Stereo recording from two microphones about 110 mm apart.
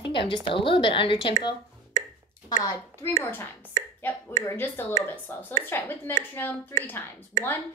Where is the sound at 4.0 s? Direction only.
20° left (ahead or behind).